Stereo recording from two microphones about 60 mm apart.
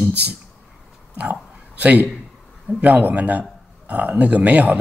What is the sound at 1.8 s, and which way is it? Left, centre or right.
Speech, right.